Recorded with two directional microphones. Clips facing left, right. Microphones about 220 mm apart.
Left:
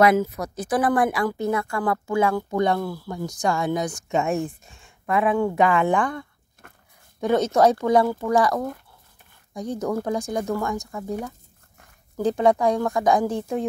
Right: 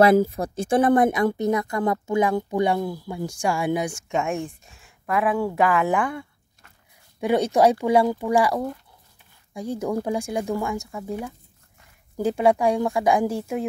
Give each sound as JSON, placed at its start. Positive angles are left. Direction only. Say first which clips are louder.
{"t": 0.0, "sound": "speech", "louder": "right 2 dB", "side_deg": -30}
{"t": 4.1, "sound": "speech", "louder": "left 4 dB", "side_deg": 0}
{"t": 6.6, "sound": "a sound", "louder": "left 8 dB", "side_deg": 55}
{"t": 7.2, "sound": "speech", "louder": "even", "side_deg": -10}